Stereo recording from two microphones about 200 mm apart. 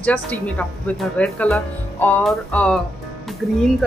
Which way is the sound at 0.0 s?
5° left (ahead or behind).